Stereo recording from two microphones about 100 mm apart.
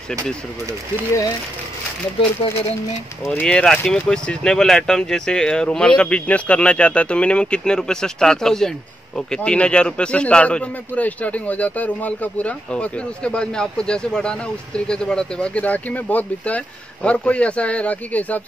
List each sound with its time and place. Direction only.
2.4 s speech: 65° left (ahead or behind)
3.3 s speech: 10° left (ahead or behind)